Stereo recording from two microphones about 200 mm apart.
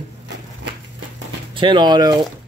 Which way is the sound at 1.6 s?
25° right (ahead or behind).